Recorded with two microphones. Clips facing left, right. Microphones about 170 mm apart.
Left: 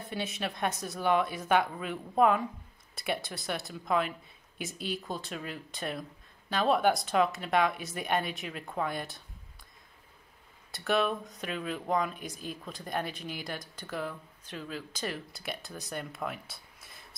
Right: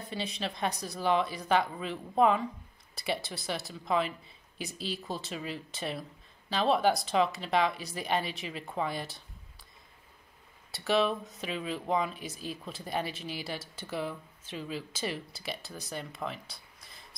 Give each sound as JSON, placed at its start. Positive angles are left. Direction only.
{"t": 0.1, "sound": "a woman's voice", "side_deg": 5}
{"t": 4.7, "sound": "speech", "side_deg": 55}
{"t": 5.0, "sound": "a woman's voice", "side_deg": 0}
{"t": 10.7, "sound": "a woman's voice", "side_deg": 0}